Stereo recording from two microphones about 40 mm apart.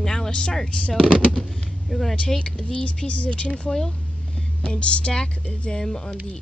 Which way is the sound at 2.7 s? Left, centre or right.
Left.